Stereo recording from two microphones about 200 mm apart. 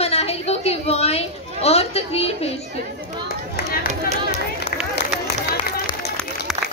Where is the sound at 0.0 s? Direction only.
30° left (ahead or behind).